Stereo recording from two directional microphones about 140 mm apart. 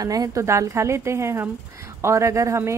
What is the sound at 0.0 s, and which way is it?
Speech, 25° right (ahead or behind).